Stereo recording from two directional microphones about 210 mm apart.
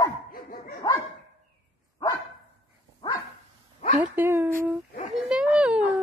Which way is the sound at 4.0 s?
10° right (ahead or behind).